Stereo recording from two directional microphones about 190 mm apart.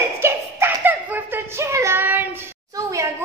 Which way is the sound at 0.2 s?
10° right (ahead or behind).